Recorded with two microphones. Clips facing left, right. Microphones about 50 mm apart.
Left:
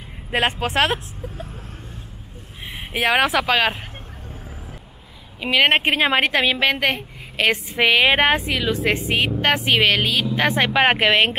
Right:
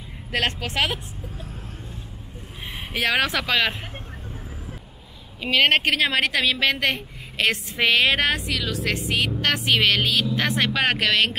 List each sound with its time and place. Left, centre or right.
0.3 s a woman's voice: left
2.9 s speech: centre
5.4 s a woman's voice: centre